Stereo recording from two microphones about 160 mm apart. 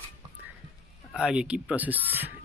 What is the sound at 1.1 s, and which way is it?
Speech, 5° right (ahead or behind).